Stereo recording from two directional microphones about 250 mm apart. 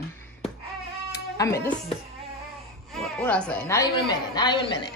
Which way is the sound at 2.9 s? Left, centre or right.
Centre.